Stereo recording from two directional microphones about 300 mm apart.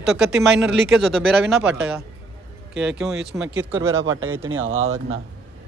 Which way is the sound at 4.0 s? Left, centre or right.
Right.